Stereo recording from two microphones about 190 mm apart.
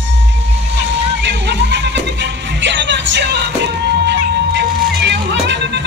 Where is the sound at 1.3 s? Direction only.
65° right (ahead or behind).